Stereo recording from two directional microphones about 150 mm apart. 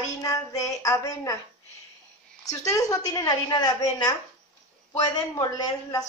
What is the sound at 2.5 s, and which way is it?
A woman's voice, 20° left (ahead or behind).